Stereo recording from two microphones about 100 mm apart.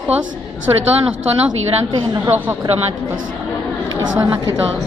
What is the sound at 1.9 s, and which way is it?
Speech, 45° right (ahead or behind).